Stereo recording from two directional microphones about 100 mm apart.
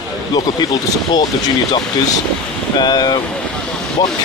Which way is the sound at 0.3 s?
40° left (ahead or behind).